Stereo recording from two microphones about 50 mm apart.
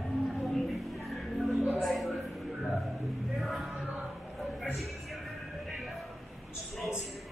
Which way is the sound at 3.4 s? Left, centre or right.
Centre.